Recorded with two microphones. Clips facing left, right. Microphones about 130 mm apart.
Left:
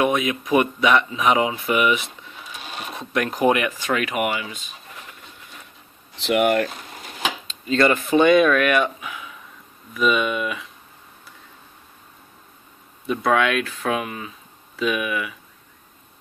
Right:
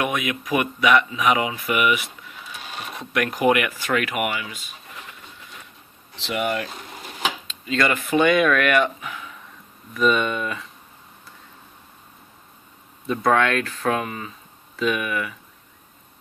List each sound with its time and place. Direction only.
0.0 s speech: 30° left (ahead or behind)
6.2 s speech: 60° left (ahead or behind)
7.6 s speech: 30° left (ahead or behind); by 10.7 s 10° left (ahead or behind)
13.2 s speech: 10° left (ahead or behind)